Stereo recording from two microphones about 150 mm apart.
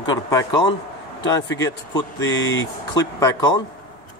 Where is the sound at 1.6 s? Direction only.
25° left (ahead or behind).